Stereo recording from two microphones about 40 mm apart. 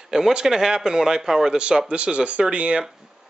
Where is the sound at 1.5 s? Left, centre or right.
Right.